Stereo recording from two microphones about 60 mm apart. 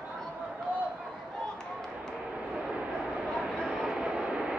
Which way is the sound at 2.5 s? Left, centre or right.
Centre.